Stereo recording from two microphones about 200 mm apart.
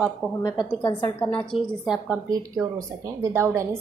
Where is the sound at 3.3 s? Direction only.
15° right (ahead or behind).